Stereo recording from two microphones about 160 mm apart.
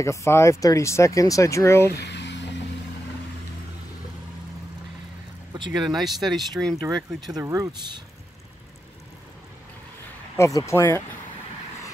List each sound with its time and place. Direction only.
0.0 s speech: 20° left (ahead or behind)
2.0 s a sound: 90° left
5.9 s speech: centre (ahead or behind)
7.2 s speech: 20° right (ahead or behind)
10.3 s speech: 20° left (ahead or behind)